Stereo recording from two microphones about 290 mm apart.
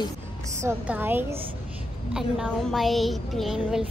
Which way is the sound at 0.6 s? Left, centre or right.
Centre.